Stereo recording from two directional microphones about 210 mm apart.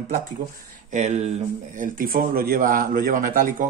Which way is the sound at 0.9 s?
35° right (ahead or behind).